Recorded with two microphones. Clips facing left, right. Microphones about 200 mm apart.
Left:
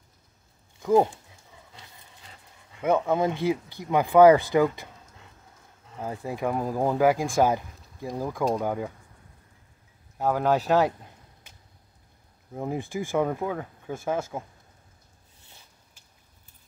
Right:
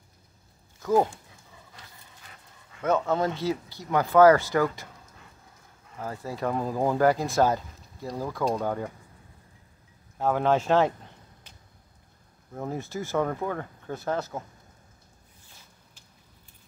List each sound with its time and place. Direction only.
0.7 s speech: 15° left (ahead or behind)
2.8 s speech: 15° left (ahead or behind)
5.9 s speech: 15° left (ahead or behind)
10.1 s speech: 5° left (ahead or behind)
12.5 s speech: 15° left (ahead or behind)